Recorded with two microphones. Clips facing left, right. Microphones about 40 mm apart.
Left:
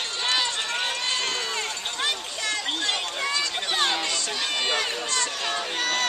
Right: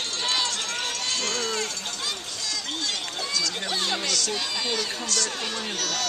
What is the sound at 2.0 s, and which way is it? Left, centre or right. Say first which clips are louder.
Run: left 8 dB; left.